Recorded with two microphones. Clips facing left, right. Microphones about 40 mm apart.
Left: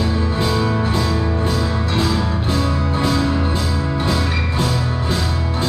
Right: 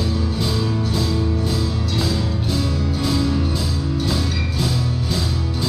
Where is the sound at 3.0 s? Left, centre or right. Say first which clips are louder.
Left 2 dB; left.